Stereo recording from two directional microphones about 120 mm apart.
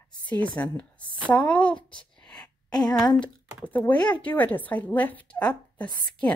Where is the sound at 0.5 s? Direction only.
10° left (ahead or behind).